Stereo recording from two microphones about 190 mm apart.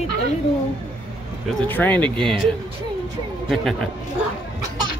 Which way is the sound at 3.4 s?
Centre (ahead or behind).